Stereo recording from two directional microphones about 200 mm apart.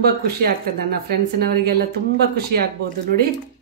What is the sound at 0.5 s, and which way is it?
Speech, 50° right (ahead or behind).